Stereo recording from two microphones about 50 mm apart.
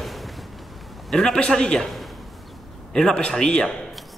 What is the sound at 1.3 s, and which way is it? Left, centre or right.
Speech, centre.